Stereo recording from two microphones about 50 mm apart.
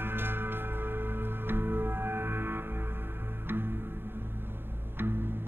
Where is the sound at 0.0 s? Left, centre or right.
Right.